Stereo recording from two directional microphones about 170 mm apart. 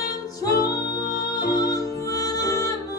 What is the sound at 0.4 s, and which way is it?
Music, 20° left (ahead or behind).